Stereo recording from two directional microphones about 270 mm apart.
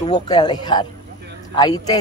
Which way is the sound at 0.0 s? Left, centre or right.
Centre.